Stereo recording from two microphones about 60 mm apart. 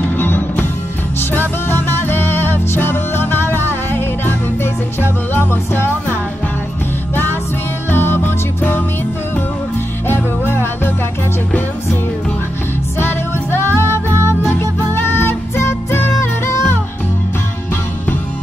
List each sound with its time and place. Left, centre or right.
0.0 s music: left
7.9 s music: left
10.0 s music: left
13.0 s music: left